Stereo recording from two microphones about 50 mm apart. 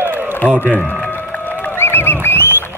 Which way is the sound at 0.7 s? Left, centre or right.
Left.